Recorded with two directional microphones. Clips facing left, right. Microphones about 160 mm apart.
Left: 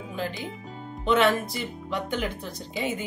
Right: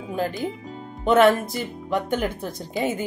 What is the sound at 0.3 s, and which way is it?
Music, centre (ahead or behind).